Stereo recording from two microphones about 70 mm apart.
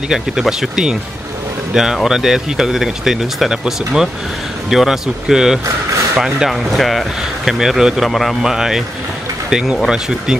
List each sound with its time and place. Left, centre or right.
0.1 s speech: centre